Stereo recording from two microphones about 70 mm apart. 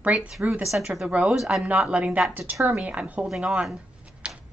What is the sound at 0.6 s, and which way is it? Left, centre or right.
Speech, centre.